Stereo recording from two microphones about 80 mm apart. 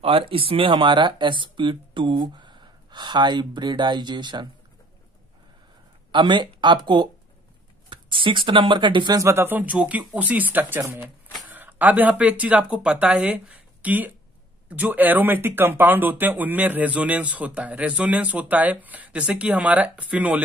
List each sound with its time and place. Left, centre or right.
0.2 s speech: right
6.1 s speech: right
7.9 s speech: right
9.2 s speech: right